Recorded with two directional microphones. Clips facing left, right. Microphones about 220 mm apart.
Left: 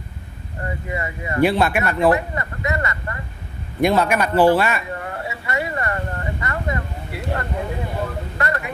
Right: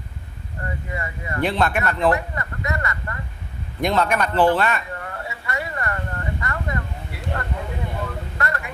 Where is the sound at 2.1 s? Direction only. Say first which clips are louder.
Left 3 dB; 20° left (ahead or behind).